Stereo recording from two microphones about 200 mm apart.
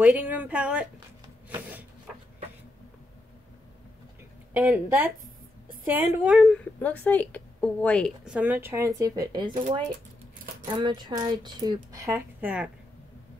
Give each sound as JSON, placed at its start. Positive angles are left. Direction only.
{"t": 0.0, "sound": "speech", "side_deg": -5}
{"t": 4.6, "sound": "a woman's voice", "side_deg": -10}
{"t": 8.4, "sound": "speech", "side_deg": -10}
{"t": 10.8, "sound": "speech", "side_deg": -20}